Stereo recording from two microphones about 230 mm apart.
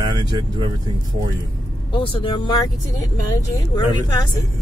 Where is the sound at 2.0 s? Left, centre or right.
Left.